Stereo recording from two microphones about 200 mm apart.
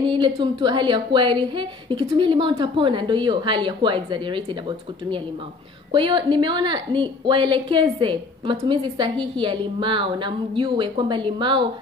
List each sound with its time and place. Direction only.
0.0 s a woman's voice: 25° right (ahead or behind)